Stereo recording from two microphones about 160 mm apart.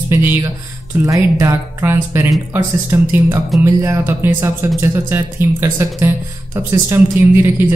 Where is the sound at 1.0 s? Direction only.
20° right (ahead or behind).